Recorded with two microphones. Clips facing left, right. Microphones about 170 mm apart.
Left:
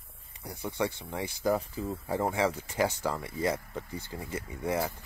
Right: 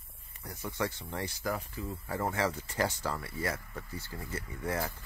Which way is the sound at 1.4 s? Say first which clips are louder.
Left 10 dB; 30° left (ahead or behind).